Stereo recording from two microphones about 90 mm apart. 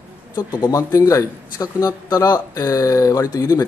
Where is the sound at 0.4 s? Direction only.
50° left (ahead or behind).